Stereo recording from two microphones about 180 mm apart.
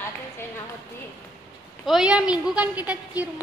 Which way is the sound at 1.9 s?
5° right (ahead or behind).